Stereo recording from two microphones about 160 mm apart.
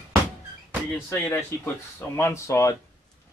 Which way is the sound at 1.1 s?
15° left (ahead or behind).